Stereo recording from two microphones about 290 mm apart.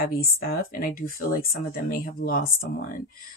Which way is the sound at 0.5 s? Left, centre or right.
Left.